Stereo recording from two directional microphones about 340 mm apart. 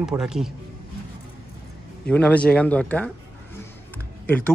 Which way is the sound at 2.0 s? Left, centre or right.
Centre.